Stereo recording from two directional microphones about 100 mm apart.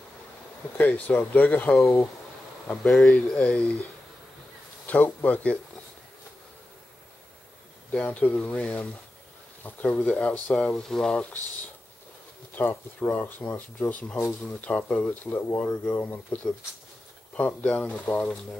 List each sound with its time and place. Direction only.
0.7 s speech: 15° left (ahead or behind)
1.8 s speech: 30° left (ahead or behind)
2.8 s speech: 5° left (ahead or behind)
4.8 s speech: 15° left (ahead or behind)
7.9 s speech: 15° left (ahead or behind)
10.7 s speech: 5° left (ahead or behind)
12.5 s speech: 20° left (ahead or behind)
17.4 s speech: 15° left (ahead or behind)